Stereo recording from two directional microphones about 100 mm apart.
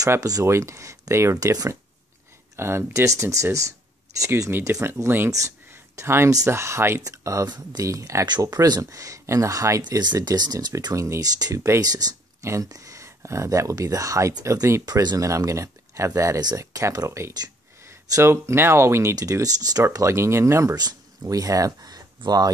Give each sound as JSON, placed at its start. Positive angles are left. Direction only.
{"t": 0.1, "sound": "speech", "side_deg": -35}
{"t": 11.8, "sound": "speech", "side_deg": -40}